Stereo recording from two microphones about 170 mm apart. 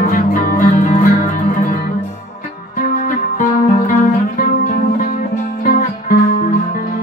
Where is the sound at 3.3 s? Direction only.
50° left (ahead or behind).